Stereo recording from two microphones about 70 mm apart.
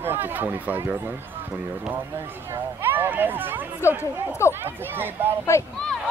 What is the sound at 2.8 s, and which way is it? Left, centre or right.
Speech, right.